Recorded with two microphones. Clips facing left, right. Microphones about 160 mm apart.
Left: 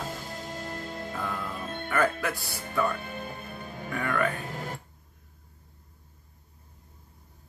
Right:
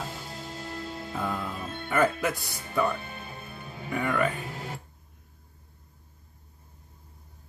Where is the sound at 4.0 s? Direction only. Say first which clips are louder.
Right 1 dB; 15° right (ahead or behind).